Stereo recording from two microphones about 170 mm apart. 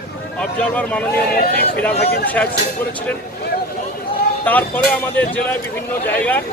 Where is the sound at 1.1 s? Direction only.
60° left (ahead or behind).